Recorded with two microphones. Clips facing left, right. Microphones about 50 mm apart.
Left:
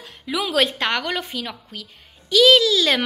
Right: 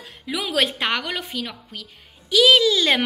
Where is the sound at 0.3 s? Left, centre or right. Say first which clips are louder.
Left 2 dB; centre.